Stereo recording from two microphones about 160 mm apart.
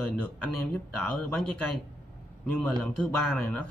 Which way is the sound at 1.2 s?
5° left (ahead or behind).